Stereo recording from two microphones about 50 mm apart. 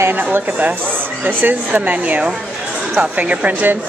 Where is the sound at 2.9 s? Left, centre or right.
Right.